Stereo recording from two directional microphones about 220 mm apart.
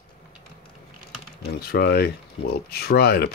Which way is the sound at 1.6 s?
45° left (ahead or behind).